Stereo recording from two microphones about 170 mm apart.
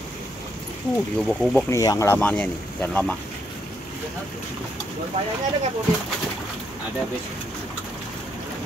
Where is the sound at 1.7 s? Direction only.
20° left (ahead or behind).